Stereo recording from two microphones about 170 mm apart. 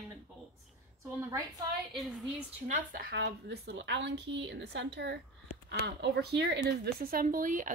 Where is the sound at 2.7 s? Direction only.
60° right (ahead or behind).